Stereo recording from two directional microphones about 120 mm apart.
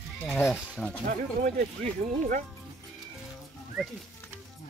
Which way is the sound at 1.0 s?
90° right.